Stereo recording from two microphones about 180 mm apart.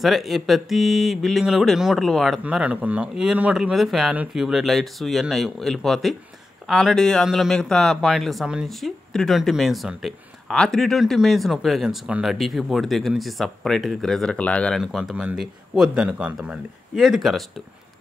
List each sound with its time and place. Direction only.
0.0 s speech: centre (ahead or behind)